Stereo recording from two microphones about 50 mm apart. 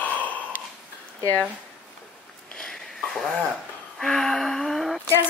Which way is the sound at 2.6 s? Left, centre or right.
Centre.